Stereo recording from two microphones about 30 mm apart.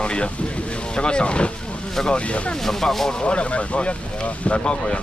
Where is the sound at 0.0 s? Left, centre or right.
Left.